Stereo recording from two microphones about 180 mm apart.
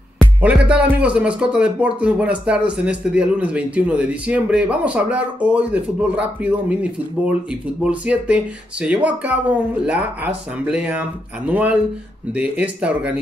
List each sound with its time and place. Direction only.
0.4 s speech: 5° right (ahead or behind)